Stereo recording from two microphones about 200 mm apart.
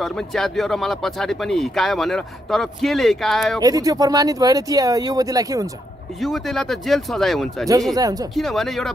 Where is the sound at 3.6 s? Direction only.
20° right (ahead or behind).